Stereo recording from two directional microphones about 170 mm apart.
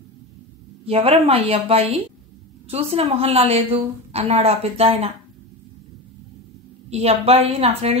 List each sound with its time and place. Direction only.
0.8 s a woman's voice: 35° right (ahead or behind)
6.9 s a woman's voice: 40° right (ahead or behind)